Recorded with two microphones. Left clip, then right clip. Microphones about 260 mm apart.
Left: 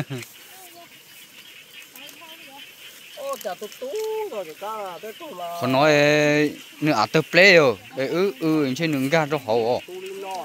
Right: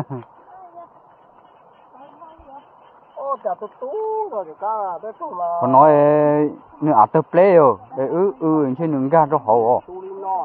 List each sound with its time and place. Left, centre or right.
3.8 s speech: centre